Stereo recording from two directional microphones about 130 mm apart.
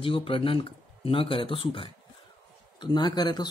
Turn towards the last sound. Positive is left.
turn(degrees=35)  # may be behind; listen again after turning